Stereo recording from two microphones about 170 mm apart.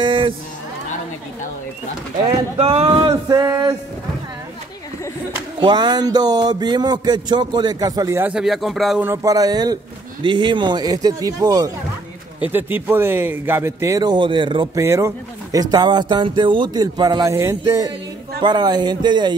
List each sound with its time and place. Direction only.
0.0 s a sound: 30° right (ahead or behind)
2.5 s speech: 35° right (ahead or behind)
5.6 s speech: 25° right (ahead or behind)
8.2 s speech: 5° right (ahead or behind)
9.0 s speech: 15° right (ahead or behind)
12.4 s a man's voice: 10° right (ahead or behind); by 14.7 s 30° right (ahead or behind)
14.8 s speech: 15° right (ahead or behind)